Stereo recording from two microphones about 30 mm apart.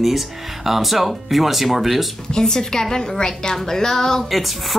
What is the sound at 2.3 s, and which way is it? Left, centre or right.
A woman's voice, left.